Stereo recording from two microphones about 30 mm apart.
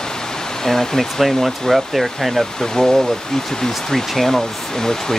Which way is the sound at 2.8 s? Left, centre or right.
Left.